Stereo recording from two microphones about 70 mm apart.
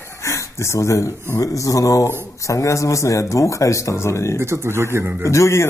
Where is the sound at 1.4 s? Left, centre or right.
Left.